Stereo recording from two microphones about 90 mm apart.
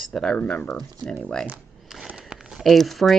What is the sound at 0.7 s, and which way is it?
Speech, centre (ahead or behind).